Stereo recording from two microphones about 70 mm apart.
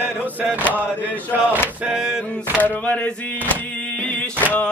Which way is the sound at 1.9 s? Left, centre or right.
Centre.